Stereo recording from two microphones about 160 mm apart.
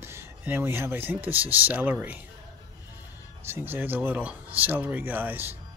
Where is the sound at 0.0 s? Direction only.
15° right (ahead or behind).